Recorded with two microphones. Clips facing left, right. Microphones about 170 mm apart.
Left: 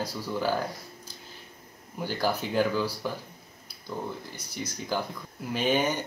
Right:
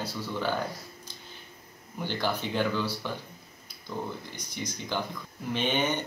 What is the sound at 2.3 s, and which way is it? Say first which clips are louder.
Speech: left 2 dB; 10° left (ahead or behind).